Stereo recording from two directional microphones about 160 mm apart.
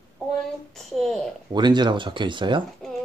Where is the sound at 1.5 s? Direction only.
30° right (ahead or behind).